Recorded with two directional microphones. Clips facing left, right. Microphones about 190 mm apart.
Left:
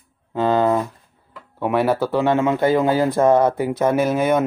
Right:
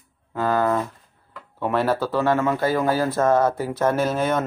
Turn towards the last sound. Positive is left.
turn(degrees=10)  # may be behind; listen again after turning